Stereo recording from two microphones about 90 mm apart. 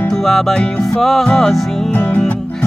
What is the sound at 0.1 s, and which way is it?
Music, centre (ahead or behind).